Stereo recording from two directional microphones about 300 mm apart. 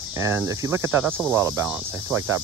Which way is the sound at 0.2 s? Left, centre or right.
Centre.